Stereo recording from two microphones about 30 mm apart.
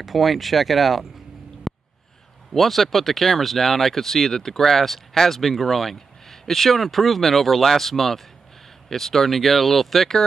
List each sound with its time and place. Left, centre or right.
0.0 s speech: centre
1.7 s a sound: centre
2.5 s speech: centre